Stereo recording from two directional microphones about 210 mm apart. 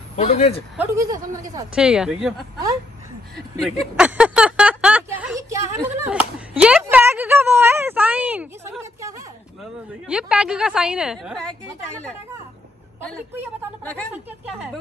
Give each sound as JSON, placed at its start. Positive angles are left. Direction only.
{"t": 0.2, "sound": "speech", "side_deg": 30}
{"t": 0.7, "sound": "a woman's voice", "side_deg": -15}
{"t": 1.8, "sound": "speech", "side_deg": -5}
{"t": 3.3, "sound": "a sound", "side_deg": 0}
{"t": 9.6, "sound": "speech", "side_deg": -5}